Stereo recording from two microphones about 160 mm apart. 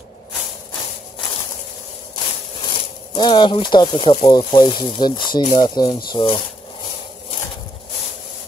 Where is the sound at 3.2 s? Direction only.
30° left (ahead or behind).